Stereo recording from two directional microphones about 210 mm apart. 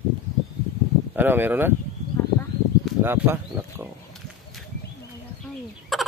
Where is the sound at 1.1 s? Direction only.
10° right (ahead or behind).